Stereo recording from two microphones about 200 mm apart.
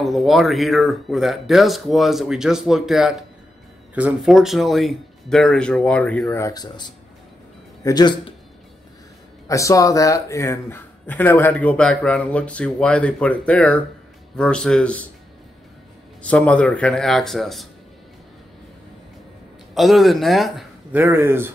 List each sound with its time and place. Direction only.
0.0 s speech: centre (ahead or behind); by 8.4 s 20° left (ahead or behind)
9.5 s speech: 15° left (ahead or behind)
16.2 s speech: 5° left (ahead or behind)
19.7 s speech: centre (ahead or behind)
21.0 s speech: 10° right (ahead or behind)